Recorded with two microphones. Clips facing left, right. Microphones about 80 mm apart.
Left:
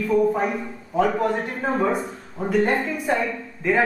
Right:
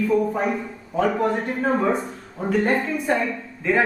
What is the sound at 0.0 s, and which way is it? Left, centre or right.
A man's voice, centre.